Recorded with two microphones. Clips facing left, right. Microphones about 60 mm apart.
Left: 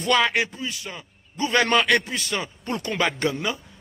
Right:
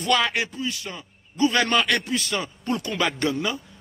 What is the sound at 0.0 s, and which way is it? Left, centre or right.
A man's voice, left.